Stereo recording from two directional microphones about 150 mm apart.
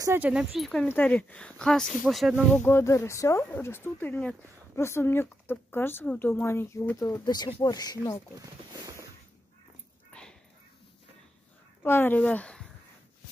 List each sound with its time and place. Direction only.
0.0 s speech: 15° right (ahead or behind)
0.3 s speech: 5° right (ahead or behind)
0.8 s speech: 10° left (ahead or behind)
2.5 s speech: 15° left (ahead or behind)
7.2 s speech: 30° left (ahead or behind)
8.4 s speech: 25° right (ahead or behind)
10.1 s a sound: 10° left (ahead or behind)
11.8 s speech: 15° left (ahead or behind)